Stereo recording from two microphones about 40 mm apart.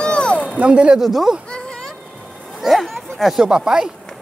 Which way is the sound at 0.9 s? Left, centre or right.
Centre.